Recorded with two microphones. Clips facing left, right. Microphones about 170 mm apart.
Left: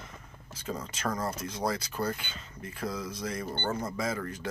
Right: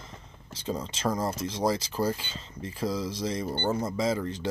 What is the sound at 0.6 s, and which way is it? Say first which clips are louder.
Speech: right 4 dB; 25° right (ahead or behind).